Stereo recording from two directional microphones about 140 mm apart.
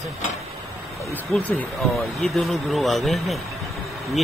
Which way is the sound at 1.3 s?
10° left (ahead or behind).